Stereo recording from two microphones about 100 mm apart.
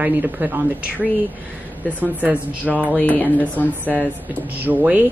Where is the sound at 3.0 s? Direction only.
15° left (ahead or behind).